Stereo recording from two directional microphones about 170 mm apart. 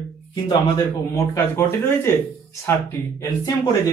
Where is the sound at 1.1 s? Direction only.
15° left (ahead or behind).